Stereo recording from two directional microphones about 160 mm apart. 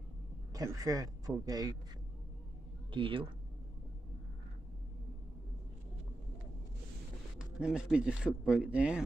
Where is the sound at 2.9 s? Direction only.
30° right (ahead or behind).